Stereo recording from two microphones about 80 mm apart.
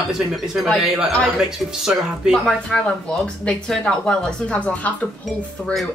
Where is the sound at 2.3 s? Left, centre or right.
Centre.